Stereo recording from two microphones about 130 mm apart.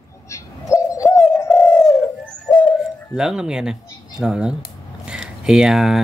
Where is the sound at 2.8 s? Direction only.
5° right (ahead or behind).